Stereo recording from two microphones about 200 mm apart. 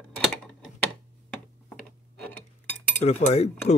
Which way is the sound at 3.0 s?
30° left (ahead or behind).